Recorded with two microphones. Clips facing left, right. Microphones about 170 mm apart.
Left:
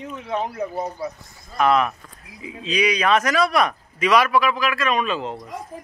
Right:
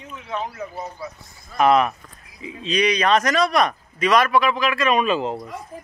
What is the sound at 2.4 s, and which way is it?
Speech, 10° left (ahead or behind).